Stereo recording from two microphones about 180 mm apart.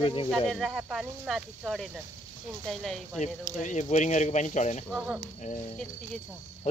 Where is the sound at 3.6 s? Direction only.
45° left (ahead or behind).